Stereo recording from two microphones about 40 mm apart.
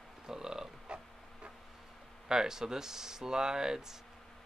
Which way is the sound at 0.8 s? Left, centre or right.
Right.